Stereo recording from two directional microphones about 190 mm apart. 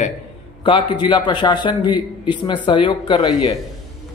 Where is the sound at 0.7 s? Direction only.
25° left (ahead or behind).